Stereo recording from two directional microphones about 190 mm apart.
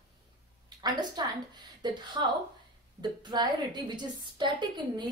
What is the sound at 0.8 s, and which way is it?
A woman's voice, 20° right (ahead or behind).